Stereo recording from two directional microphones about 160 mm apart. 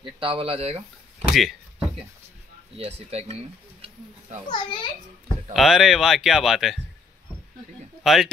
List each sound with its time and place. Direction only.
0.0 s speech: 35° right (ahead or behind)
1.3 s speech: centre (ahead or behind)
2.8 s speech: 40° right (ahead or behind)
4.5 s a child's voice: 30° left (ahead or behind)
5.5 s speech: centre (ahead or behind)
8.0 s speech: centre (ahead or behind)